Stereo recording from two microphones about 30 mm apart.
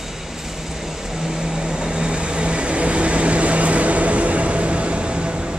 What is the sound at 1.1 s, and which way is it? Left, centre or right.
Vehicle, centre.